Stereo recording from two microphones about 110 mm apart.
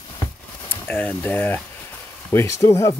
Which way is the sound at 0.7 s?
15° left (ahead or behind).